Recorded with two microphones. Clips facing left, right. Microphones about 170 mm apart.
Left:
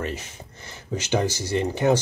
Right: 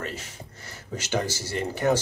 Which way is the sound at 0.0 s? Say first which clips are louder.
Left 4 dB; 20° left (ahead or behind).